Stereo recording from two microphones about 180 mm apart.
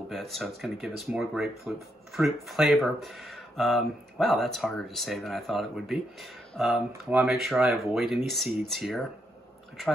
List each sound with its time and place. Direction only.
0.1 s speech: centre (ahead or behind)